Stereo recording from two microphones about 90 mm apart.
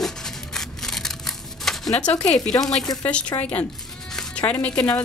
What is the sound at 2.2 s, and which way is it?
Speech, 5° left (ahead or behind).